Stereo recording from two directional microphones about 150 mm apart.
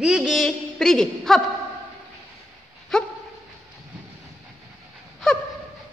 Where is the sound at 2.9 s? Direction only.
5° left (ahead or behind).